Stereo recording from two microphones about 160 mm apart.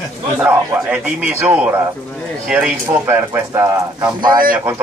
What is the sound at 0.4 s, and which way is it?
A man's voice, 10° right (ahead or behind).